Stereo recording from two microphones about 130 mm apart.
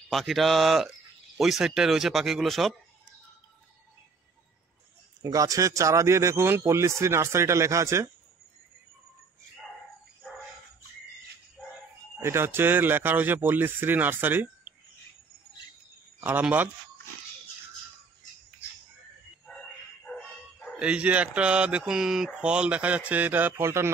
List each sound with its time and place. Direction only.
0.1 s speech: centre (ahead or behind)
5.2 s speech: 25° right (ahead or behind)
12.2 s speech: 20° right (ahead or behind)
16.2 s speech: 15° right (ahead or behind)
20.1 s dog: 5° left (ahead or behind)
20.8 s speech: 10° right (ahead or behind)